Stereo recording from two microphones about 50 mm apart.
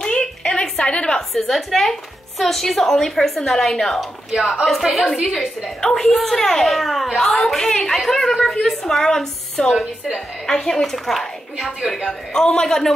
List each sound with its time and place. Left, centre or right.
0.0 s a sound: centre
1.3 s speech: centre
5.3 s a woman's voice: centre